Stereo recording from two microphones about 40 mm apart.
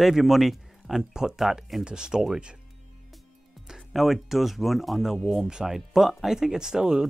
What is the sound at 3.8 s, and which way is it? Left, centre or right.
Speech, centre.